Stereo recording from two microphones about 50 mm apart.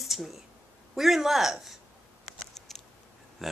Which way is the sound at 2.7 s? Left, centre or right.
Centre.